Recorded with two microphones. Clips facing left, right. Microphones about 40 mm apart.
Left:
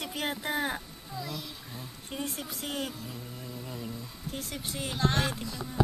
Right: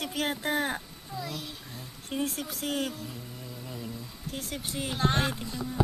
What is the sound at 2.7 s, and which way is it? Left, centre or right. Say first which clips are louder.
Speech: right 3 dB; centre.